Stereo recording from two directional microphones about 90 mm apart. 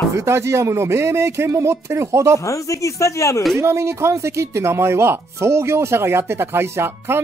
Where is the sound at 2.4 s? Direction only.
35° left (ahead or behind).